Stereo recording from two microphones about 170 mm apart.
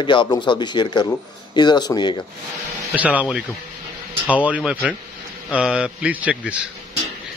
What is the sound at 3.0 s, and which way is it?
Speech, 10° right (ahead or behind).